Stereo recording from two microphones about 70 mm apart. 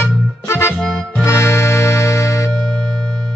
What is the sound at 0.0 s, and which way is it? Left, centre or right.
Music, left.